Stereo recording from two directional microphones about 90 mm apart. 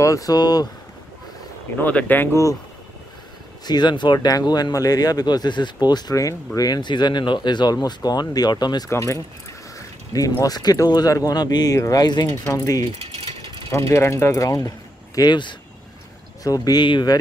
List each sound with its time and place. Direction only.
0.0 s speech: 40° left (ahead or behind)
1.8 s speech: 15° left (ahead or behind)
3.6 s speech: 55° left (ahead or behind)
6.1 s speech: 40° left (ahead or behind)
8.9 s speech: 35° left (ahead or behind)
9.8 s a sound: 40° left (ahead or behind)
10.4 s speech: 45° left (ahead or behind)
12.4 s speech: 40° left (ahead or behind)
15.1 s speech: 55° left (ahead or behind)
16.4 s speech: 45° left (ahead or behind)
16.8 s speech: 55° left (ahead or behind)